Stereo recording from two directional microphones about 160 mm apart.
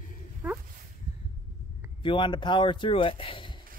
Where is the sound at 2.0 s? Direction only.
30° left (ahead or behind).